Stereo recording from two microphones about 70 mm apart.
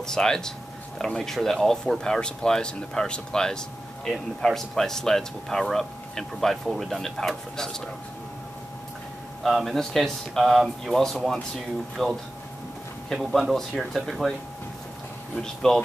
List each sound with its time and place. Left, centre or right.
0.0 s speech: centre
9.4 s speech: centre
15.3 s speech: centre